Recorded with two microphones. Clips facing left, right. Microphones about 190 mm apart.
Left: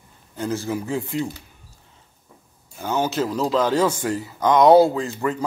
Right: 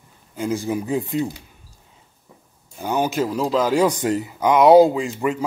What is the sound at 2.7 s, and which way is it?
Speech, 15° right (ahead or behind).